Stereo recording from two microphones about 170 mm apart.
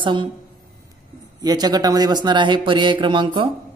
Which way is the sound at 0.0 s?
30° right (ahead or behind).